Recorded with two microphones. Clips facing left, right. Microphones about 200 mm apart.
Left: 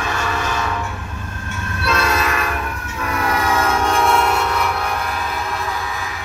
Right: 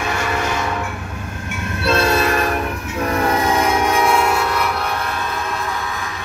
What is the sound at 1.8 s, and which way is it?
Train, 30° right (ahead or behind).